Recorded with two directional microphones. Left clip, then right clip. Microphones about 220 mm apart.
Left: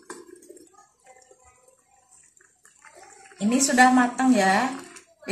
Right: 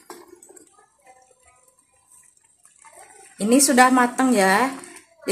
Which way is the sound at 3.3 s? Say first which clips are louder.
Right 4 dB; 50° right (ahead or behind).